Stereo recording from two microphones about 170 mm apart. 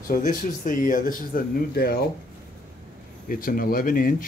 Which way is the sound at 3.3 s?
55° left (ahead or behind).